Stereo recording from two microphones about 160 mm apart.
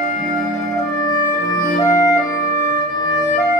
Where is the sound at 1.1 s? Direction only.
25° left (ahead or behind).